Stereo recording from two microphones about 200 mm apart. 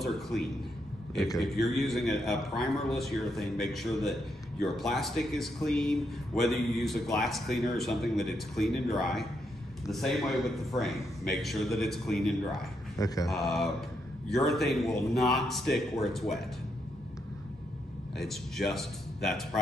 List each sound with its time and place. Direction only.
0.0 s a man's voice: centre (ahead or behind)
12.9 s speech: 20° left (ahead or behind)
13.3 s a man's voice: centre (ahead or behind)
18.1 s a man's voice: centre (ahead or behind)